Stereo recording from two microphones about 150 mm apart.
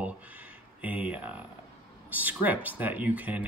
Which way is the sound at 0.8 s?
10° right (ahead or behind).